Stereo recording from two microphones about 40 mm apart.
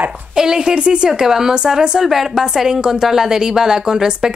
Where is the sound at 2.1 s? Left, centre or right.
Centre.